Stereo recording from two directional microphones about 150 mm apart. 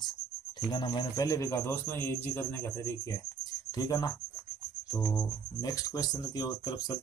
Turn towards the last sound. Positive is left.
turn(degrees=25)  # may be behind; listen again after turning